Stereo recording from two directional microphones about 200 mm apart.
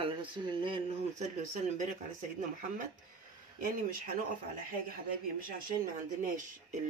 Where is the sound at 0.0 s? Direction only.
25° right (ahead or behind).